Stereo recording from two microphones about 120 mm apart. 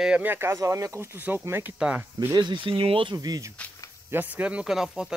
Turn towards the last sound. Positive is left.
turn(degrees=-5)  # may be behind; listen again after turning